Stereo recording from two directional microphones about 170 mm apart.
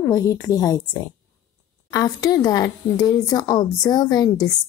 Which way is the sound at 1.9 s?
25° left (ahead or behind).